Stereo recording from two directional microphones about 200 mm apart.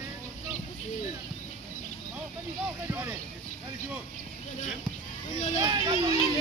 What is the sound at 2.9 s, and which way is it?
Speech, 5° right (ahead or behind).